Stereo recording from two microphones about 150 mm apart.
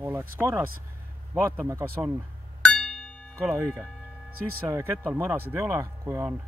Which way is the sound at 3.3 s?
15° right (ahead or behind).